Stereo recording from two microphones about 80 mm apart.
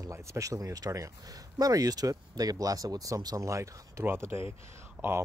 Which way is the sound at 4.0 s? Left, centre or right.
Right.